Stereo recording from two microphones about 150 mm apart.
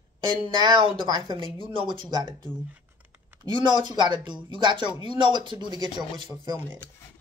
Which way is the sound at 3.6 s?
30° right (ahead or behind).